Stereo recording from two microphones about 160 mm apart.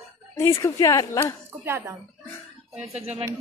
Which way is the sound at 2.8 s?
45° right (ahead or behind).